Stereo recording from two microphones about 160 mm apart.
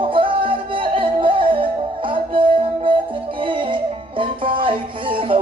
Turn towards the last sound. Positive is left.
turn(degrees=-35)  # may be behind; listen again after turning